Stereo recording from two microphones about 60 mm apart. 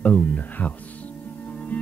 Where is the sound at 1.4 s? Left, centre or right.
Left.